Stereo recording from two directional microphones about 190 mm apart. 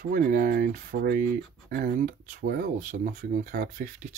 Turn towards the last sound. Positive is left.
turn(degrees=-45)  # may be behind; listen again after turning